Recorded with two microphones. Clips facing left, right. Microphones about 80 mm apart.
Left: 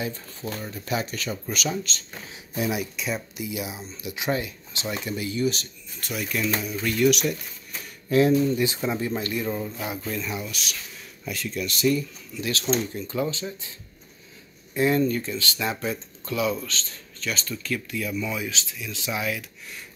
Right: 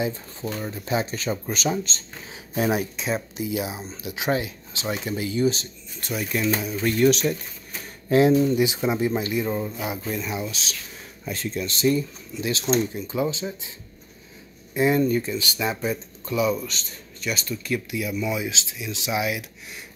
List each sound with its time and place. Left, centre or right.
0.0 s speech: right
14.7 s speech: centre